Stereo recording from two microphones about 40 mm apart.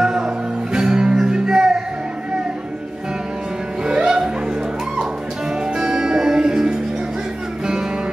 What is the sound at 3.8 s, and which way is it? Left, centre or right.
Music, right.